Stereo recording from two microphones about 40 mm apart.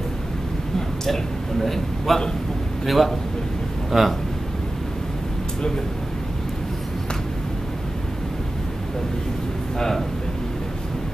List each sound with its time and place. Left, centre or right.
0.7 s a man's voice: centre
9.8 s a man's voice: centre